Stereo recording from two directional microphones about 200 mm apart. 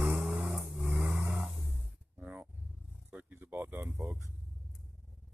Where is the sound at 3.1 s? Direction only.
10° right (ahead or behind).